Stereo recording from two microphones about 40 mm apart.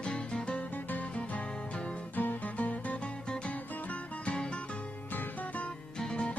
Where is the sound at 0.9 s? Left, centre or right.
Left.